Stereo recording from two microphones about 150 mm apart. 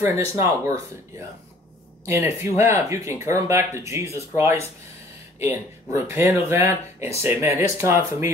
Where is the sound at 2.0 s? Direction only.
15° right (ahead or behind).